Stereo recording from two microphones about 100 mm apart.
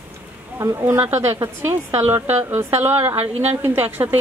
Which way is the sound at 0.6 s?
30° right (ahead or behind).